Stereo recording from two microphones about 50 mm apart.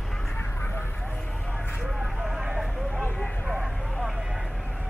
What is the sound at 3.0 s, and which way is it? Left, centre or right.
Vehicle, centre.